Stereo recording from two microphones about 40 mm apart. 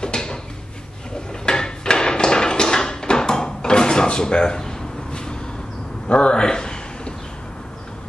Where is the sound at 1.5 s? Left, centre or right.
Centre.